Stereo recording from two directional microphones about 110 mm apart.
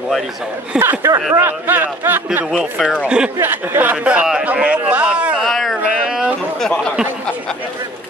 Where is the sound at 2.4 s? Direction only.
5° right (ahead or behind).